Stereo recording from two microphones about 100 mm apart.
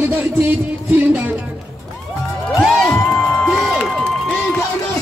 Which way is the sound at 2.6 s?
Centre (ahead or behind).